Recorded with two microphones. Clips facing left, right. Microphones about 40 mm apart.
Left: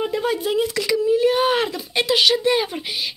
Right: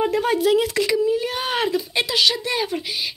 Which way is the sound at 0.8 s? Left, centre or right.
Right.